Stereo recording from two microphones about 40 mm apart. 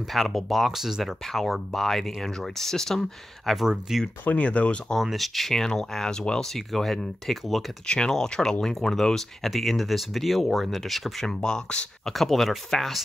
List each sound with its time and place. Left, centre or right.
0.1 s speech: centre
0.7 s speech: centre
1.3 s speech: centre
3.9 s speech: centre
4.3 s speech: left
5.1 s speech: centre
7.8 s speech: left; by 11.2 s centre
11.2 s speech: centre
12.1 s speech: centre